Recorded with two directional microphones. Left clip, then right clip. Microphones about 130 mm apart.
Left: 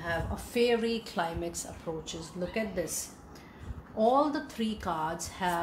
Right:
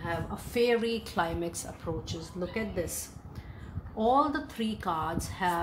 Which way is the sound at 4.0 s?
45° right (ahead or behind).